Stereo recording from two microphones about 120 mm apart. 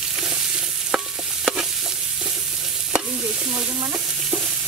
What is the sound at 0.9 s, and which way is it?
Stir, 5° right (ahead or behind).